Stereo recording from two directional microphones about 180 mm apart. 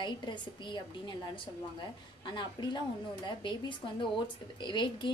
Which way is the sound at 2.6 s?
20° left (ahead or behind).